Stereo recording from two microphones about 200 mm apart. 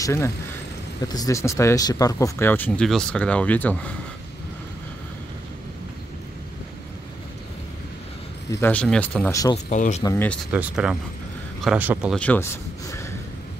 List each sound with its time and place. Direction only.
0.0 s speech: 15° left (ahead or behind)
8.5 s speech: 10° left (ahead or behind)
9.7 s speech: 35° left (ahead or behind)
10.0 s speech: 10° left (ahead or behind)
10.5 s speech: 5° right (ahead or behind)
12.2 s speech: 5° left (ahead or behind)